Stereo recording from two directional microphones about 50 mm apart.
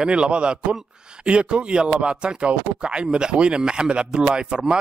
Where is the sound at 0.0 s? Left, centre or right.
Centre.